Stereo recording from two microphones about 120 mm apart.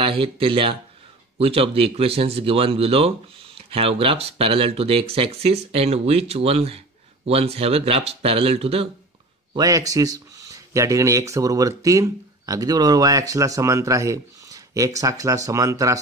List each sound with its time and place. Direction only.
0.0 s speech: 50° right (ahead or behind)
9.6 s speech: 30° right (ahead or behind)